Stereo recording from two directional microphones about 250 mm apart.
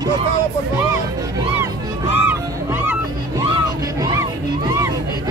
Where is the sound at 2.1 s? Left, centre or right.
Centre.